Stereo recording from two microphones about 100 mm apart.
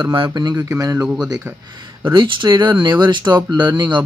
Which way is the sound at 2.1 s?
50° right (ahead or behind).